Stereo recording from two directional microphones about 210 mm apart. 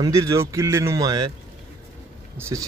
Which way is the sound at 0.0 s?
15° right (ahead or behind).